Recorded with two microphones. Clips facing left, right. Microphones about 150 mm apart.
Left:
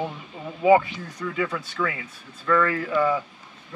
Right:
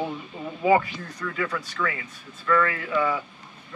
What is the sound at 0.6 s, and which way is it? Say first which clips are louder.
Speech: left 3 dB; 15° left (ahead or behind).